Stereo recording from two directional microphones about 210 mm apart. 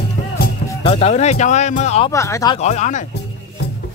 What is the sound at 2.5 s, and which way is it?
Speech, 35° left (ahead or behind).